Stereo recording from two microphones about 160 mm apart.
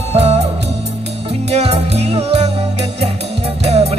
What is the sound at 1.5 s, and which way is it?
Music, 40° right (ahead or behind).